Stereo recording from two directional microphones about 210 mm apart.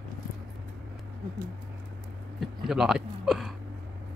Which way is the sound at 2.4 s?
Centre (ahead or behind).